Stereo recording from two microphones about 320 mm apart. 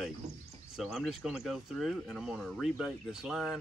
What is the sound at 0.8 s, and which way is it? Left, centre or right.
Speech, centre.